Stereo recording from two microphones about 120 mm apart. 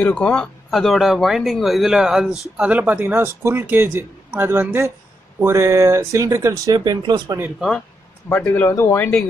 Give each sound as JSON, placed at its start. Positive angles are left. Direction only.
{"t": 0.0, "sound": "speech", "side_deg": 10}
{"t": 8.3, "sound": "speech", "side_deg": 15}